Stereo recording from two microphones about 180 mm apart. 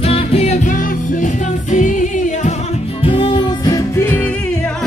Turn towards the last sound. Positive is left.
turn(degrees=10)  # may be behind; listen again after turning